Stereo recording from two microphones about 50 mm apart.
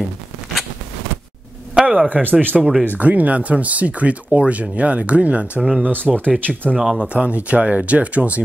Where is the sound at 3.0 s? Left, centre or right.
Right.